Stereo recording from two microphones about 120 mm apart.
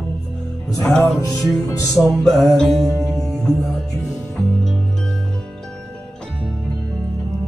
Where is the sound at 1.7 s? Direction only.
30° left (ahead or behind).